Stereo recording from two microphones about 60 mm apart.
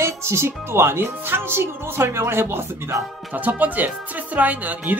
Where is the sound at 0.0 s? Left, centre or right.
Right.